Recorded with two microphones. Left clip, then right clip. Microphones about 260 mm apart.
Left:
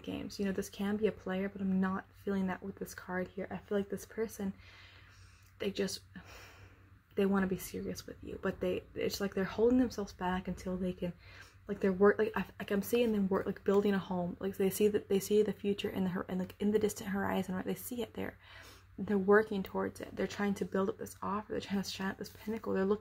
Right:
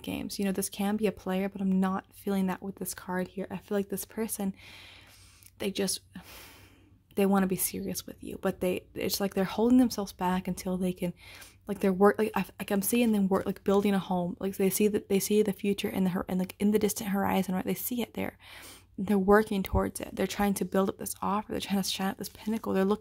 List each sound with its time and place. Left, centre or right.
0.0 s speech: right
5.6 s speech: right